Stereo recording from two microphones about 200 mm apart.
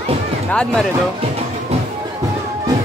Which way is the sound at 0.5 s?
5° left (ahead or behind).